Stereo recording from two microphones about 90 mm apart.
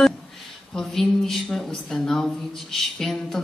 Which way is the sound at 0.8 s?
5° left (ahead or behind).